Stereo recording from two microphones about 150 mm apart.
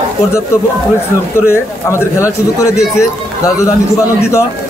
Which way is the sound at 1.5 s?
15° left (ahead or behind).